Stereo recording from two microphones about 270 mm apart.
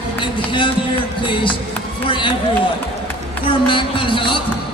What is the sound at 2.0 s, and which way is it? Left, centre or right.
Run, centre.